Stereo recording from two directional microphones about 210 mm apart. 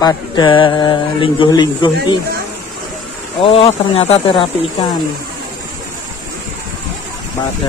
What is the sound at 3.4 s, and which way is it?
Speech, 25° left (ahead or behind).